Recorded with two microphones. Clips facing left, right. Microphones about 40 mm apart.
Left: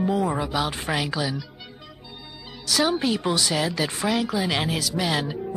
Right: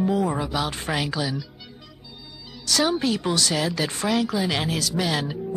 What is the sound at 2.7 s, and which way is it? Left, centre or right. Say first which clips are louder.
A woman's voice: even; centre.